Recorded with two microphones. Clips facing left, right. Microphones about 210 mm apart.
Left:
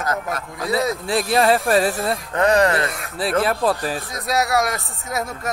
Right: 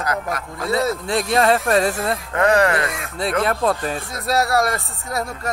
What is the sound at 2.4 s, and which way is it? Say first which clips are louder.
Speech: even; 20° left (ahead or behind).